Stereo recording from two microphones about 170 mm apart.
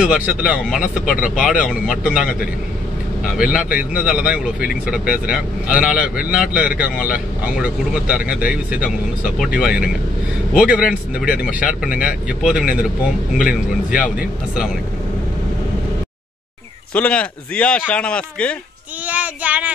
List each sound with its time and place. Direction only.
0.0 s a man's voice: 5° right (ahead or behind)
3.7 s a man's voice: 5° right (ahead or behind)
13.4 s speech: 50° left (ahead or behind)
13.9 s speech: 5° right (ahead or behind)
16.9 s speech: 10° left (ahead or behind)
19.0 s child singing: 10° right (ahead or behind)